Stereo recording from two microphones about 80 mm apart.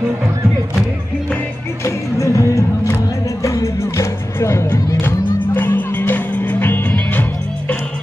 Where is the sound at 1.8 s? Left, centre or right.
Left.